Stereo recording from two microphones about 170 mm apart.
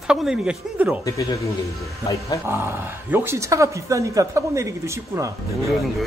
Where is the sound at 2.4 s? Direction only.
15° right (ahead or behind).